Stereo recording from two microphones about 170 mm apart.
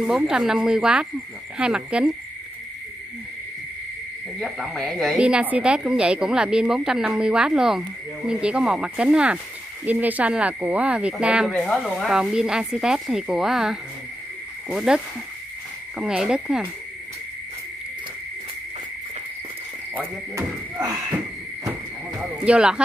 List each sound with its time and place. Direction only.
0.0 s speech: 5° right (ahead or behind)
4.4 s speech: centre (ahead or behind)
14.9 s speech: 5° right (ahead or behind)
20.3 s speech: 20° right (ahead or behind)
22.2 s speech: 5° right (ahead or behind)